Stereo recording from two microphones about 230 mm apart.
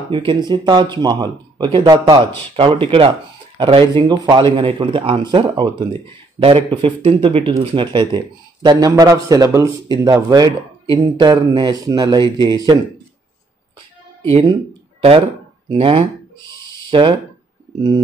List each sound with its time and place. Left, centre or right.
0.1 s speech: right
14.3 s speech: right